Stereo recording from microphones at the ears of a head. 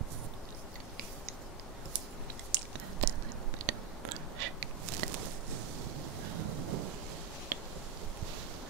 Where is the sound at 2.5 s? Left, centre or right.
Right.